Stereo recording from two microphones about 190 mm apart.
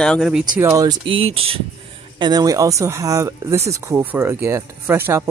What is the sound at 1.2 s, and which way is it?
Speech, 30° right (ahead or behind).